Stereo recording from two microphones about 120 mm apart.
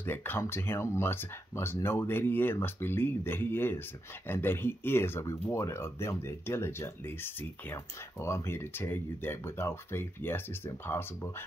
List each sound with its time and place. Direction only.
0.0 s speech: 15° left (ahead or behind)